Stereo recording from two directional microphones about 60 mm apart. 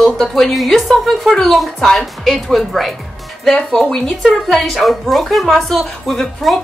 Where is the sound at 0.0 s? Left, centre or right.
Centre.